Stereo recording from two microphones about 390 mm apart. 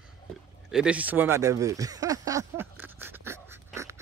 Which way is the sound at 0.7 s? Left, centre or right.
Centre.